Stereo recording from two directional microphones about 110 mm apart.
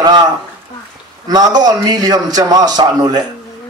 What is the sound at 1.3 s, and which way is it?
A man's voice, 35° right (ahead or behind).